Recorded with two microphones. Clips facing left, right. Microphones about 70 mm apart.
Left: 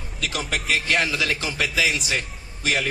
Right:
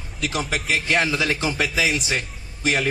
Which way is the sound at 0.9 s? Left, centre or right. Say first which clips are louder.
Right 3 dB; right.